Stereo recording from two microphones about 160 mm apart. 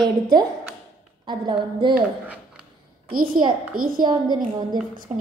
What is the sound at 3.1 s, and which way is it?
Speech, 65° right (ahead or behind).